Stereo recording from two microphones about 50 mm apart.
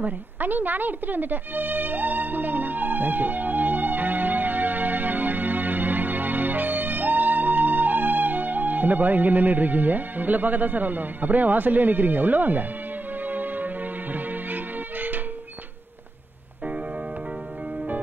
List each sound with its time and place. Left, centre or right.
0.0 s music: right